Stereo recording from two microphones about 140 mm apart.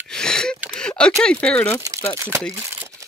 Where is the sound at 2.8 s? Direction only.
25° right (ahead or behind).